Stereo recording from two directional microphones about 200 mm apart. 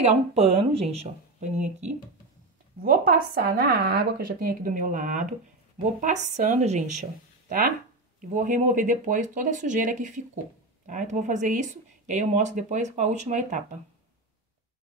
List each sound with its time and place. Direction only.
0.0 s speech: 30° right (ahead or behind)
2.8 s a woman's voice: 50° right (ahead or behind)